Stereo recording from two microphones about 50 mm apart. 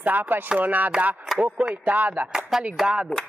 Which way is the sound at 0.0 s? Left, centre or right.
Right.